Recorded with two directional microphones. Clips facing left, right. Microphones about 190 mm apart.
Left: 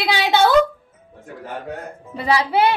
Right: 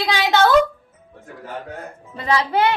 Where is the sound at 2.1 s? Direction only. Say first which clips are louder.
Left 1 dB; 10° left (ahead or behind).